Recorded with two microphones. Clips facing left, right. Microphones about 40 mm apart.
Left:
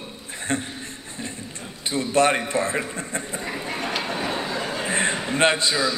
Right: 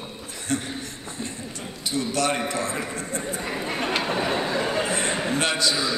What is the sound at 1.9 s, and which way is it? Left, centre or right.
A man's voice, left.